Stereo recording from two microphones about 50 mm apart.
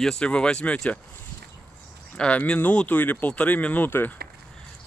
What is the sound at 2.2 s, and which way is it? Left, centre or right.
Speech, left.